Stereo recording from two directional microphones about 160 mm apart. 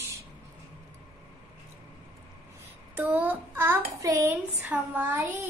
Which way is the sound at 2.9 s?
10° right (ahead or behind).